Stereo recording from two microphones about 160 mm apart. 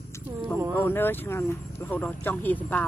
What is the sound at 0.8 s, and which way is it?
Speech, 15° left (ahead or behind).